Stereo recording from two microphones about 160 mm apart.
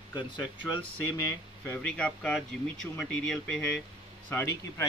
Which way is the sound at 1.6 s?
10° left (ahead or behind).